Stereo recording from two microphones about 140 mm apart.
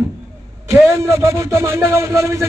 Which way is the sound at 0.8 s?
20° right (ahead or behind).